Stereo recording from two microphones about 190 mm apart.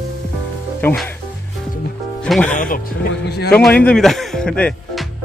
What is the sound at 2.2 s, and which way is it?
Speech, centre (ahead or behind).